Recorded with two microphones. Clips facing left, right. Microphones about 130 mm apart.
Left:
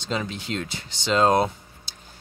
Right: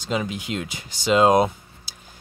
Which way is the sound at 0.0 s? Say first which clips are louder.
Right 3 dB; 10° right (ahead or behind).